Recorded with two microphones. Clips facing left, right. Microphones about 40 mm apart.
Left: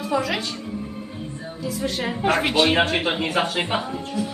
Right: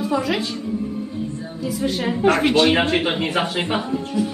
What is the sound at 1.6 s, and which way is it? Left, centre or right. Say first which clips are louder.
Speech: right 3 dB; centre.